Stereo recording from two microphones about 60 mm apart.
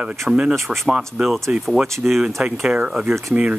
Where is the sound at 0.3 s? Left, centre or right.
Centre.